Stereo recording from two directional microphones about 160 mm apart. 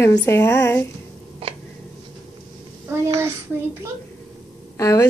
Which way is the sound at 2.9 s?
15° right (ahead or behind).